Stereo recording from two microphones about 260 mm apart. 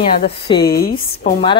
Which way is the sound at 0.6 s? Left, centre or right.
Left.